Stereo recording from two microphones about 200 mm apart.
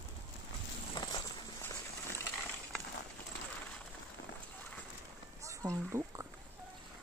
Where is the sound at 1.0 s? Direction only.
25° left (ahead or behind).